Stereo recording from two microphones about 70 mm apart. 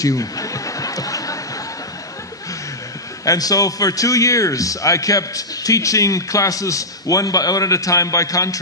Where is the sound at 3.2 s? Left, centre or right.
Left.